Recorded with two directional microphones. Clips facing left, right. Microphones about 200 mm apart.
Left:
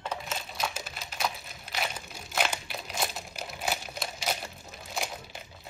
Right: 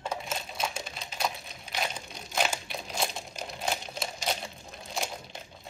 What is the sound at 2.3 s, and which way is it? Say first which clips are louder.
Crumpling: right 1 dB; 5° right (ahead or behind).